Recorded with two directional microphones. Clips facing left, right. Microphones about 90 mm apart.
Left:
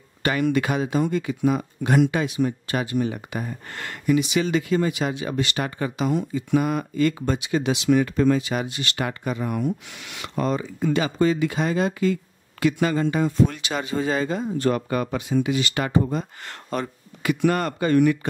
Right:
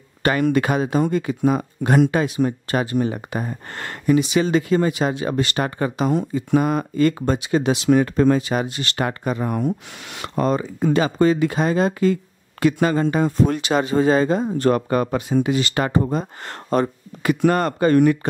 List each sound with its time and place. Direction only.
0.2 s speech: 45° right (ahead or behind)